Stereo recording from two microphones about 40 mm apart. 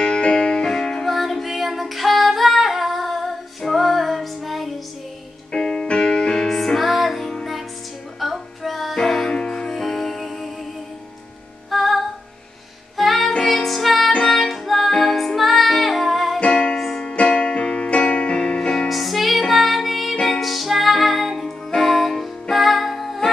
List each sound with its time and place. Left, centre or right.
0.0 s music: left
1.0 s female singing: centre
5.5 s music: centre
9.0 s music: centre
11.7 s music: centre
16.3 s music: left
16.7 s music: centre
17.0 s keyboard: left
18.9 s music: centre